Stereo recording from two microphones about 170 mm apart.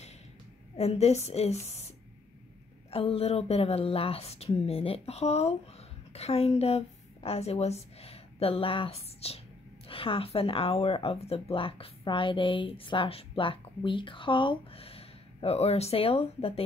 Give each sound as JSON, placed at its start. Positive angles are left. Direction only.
{"t": 0.7, "sound": "speech", "side_deg": 40}